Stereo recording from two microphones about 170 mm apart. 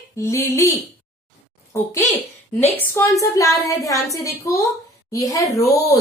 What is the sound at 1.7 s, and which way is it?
A woman's voice, 15° left (ahead or behind).